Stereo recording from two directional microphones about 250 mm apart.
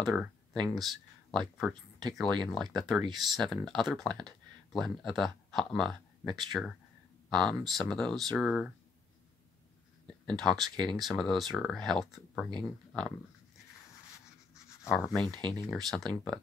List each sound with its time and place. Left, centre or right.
0.0 s speech: centre
10.0 s speech: centre
10.6 s speech: centre
11.1 s speech: centre
15.1 s speech: centre